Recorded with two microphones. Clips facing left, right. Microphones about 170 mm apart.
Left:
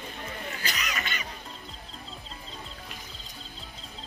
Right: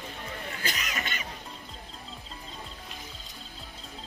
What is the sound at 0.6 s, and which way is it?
Cough, 50° right (ahead or behind).